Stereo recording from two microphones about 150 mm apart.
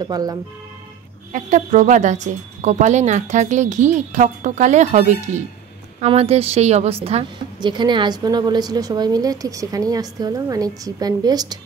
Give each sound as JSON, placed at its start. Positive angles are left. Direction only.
{"t": 0.0, "sound": "a woman's voice", "side_deg": -25}
{"t": 1.3, "sound": "a woman's voice", "side_deg": -55}